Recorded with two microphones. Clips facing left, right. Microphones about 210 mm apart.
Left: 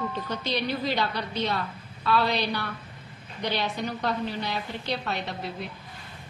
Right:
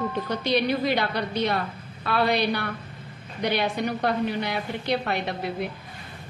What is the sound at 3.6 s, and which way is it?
A woman's voice, 60° right (ahead or behind).